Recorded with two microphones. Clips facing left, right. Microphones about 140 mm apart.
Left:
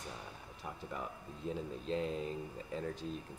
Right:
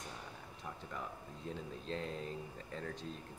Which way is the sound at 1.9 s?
5° left (ahead or behind).